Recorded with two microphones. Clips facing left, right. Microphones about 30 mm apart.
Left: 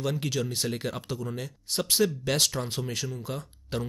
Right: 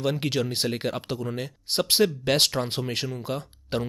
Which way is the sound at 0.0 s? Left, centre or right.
Right.